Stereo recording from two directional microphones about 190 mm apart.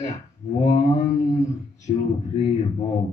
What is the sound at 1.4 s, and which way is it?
Speech, 20° left (ahead or behind).